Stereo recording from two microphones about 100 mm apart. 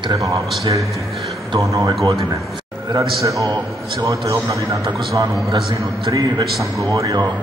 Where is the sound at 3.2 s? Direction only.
35° right (ahead or behind).